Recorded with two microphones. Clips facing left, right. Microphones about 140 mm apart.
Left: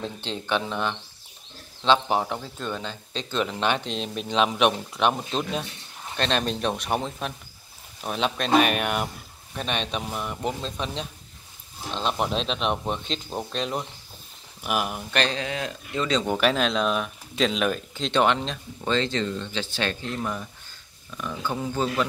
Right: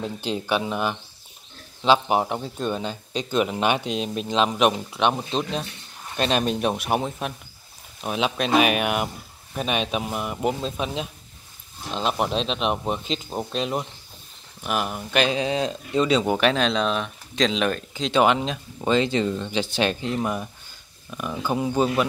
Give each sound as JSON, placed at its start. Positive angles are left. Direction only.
{"t": 0.0, "sound": "a man's voice", "side_deg": -10}
{"t": 6.1, "sound": "a man's voice", "side_deg": -10}
{"t": 15.4, "sound": "speech", "side_deg": -25}
{"t": 16.1, "sound": "a man's voice", "side_deg": -10}
{"t": 16.3, "sound": "a man's voice", "side_deg": 0}